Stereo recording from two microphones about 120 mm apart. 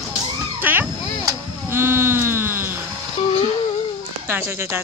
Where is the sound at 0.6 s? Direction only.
15° right (ahead or behind).